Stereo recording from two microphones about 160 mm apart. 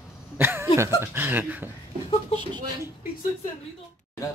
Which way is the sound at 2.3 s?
30° right (ahead or behind).